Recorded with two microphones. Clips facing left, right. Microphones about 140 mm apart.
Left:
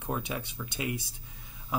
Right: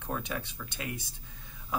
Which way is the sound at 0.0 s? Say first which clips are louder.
Left 2 dB; 15° left (ahead or behind).